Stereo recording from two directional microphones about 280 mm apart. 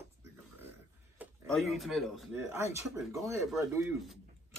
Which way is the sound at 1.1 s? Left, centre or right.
Centre.